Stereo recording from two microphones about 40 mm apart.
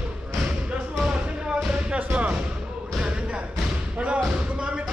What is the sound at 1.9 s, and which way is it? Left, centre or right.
Music, right.